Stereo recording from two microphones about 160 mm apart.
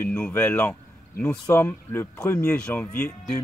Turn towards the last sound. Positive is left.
turn(degrees=10)  # may be behind; listen again after turning